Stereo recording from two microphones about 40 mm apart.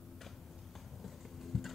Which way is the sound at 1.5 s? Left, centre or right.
Centre.